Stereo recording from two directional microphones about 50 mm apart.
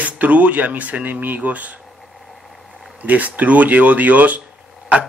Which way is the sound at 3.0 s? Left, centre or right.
Right.